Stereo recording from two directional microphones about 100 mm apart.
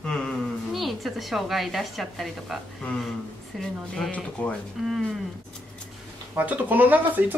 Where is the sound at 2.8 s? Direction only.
15° left (ahead or behind).